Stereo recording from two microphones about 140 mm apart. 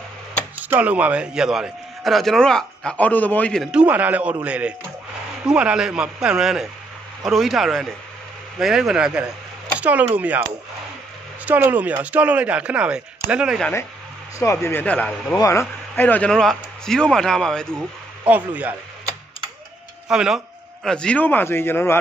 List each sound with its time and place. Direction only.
0.6 s a man's voice: 10° right (ahead or behind); by 3.6 s 10° left (ahead or behind)
3.6 s a man's voice: 10° right (ahead or behind)
11.4 s speech: 10° right (ahead or behind)
14.4 s speech: 20° left (ahead or behind)
15.3 s a man's voice: 20° left (ahead or behind)
16.0 s a man's voice: 10° left (ahead or behind)
18.2 s speech: 10° right (ahead or behind)
20.1 s speech: 5° right (ahead or behind); by 21.9 s 15° left (ahead or behind)